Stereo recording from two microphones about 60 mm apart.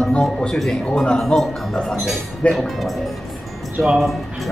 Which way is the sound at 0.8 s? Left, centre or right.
Centre.